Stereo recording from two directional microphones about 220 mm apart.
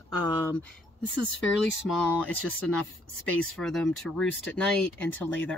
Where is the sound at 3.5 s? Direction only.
Centre (ahead or behind).